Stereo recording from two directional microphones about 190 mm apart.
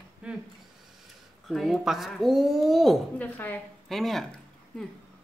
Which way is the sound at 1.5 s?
Centre (ahead or behind).